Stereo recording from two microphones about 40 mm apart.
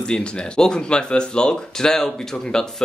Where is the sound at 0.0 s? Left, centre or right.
Left.